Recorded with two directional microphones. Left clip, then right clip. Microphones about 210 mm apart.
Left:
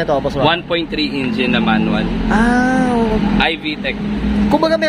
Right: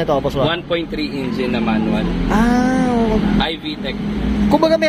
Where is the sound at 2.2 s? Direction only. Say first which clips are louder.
Left 2 dB; centre (ahead or behind).